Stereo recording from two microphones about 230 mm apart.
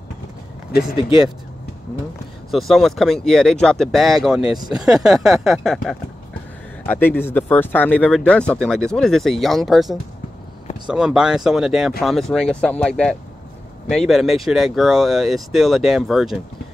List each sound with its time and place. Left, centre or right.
0.7 s speech: left
2.5 s speech: centre